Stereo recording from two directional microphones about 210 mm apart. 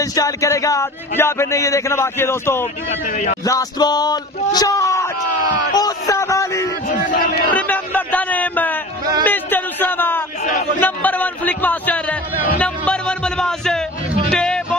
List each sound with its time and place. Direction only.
0.0 s speech: 15° left (ahead or behind)
3.1 s speech: 35° left (ahead or behind)
3.4 s speech: 15° left (ahead or behind)
5.8 s a sound: 15° left (ahead or behind)
7.1 s a sound: 40° left (ahead or behind)
7.5 s music: 10° left (ahead or behind)
9.2 s a sound: 10° left (ahead or behind)
10.8 s a man's voice: 5° left (ahead or behind)
14.3 s music: 5° left (ahead or behind)